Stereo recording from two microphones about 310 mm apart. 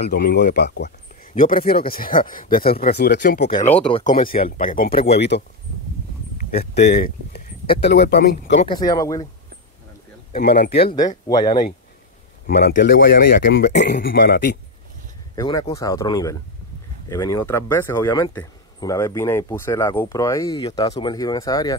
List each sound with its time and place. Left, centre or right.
0.1 s speech: left; by 9.3 s centre
10.3 s speech: left
11.2 s speech: centre
12.4 s speech: left
15.3 s speech: centre